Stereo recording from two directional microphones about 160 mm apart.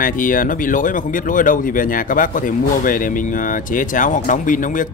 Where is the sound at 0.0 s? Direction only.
60° left (ahead or behind).